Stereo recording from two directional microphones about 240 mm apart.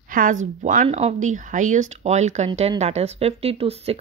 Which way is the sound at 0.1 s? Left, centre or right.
Right.